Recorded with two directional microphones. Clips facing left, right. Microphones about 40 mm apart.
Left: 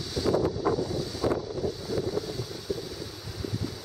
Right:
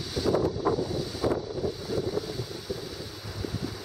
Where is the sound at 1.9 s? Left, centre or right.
Centre.